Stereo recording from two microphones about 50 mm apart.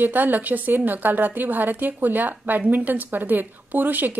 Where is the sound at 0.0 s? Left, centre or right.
Right.